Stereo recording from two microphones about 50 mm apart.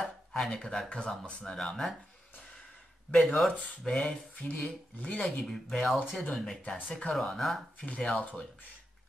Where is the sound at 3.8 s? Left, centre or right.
Centre.